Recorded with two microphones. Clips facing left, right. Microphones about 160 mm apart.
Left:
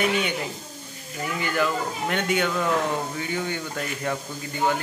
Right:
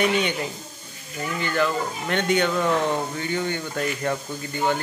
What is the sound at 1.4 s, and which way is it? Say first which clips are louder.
Speech: right 1 dB; 10° left (ahead or behind).